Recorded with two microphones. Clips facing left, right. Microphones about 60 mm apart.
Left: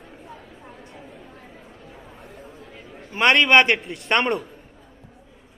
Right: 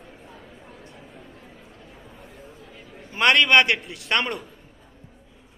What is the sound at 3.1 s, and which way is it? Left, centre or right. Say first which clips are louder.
A man's voice: left 2 dB; left.